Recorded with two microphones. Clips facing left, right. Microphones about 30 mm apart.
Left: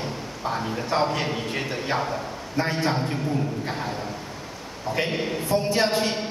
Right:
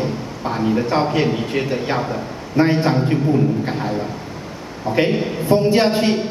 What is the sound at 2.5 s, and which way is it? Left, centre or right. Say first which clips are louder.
A man's voice: right 8 dB; right.